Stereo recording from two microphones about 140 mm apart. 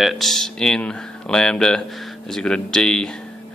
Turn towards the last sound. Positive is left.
turn(degrees=5)  # may be behind; listen again after turning